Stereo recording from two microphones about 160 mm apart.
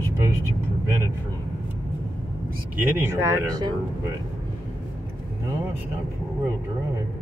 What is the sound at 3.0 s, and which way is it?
Speech, 15° right (ahead or behind).